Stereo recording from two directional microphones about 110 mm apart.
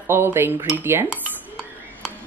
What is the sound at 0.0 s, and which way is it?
Speech, 20° right (ahead or behind).